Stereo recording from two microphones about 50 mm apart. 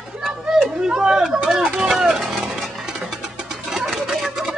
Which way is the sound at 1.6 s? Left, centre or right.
Right.